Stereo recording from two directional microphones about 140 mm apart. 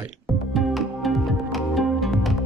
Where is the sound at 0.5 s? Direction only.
Centre (ahead or behind).